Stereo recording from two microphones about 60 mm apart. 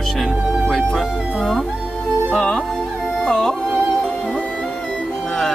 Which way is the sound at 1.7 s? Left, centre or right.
Centre.